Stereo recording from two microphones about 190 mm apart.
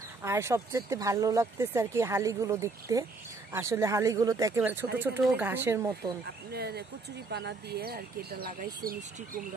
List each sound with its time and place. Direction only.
0.2 s speech: 15° right (ahead or behind)
6.2 s speech: 55° right (ahead or behind)